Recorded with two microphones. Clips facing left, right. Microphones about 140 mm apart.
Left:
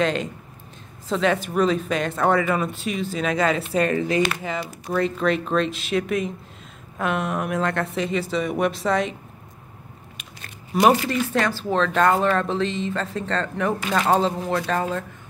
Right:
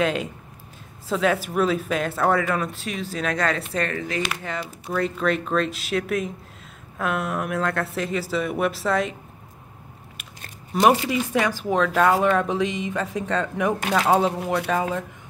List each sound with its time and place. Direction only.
0.0 s speech: 5° right (ahead or behind)
3.9 s speech: 20° left (ahead or behind)
4.4 s speech: 5° left (ahead or behind)
10.9 s speech: 10° right (ahead or behind)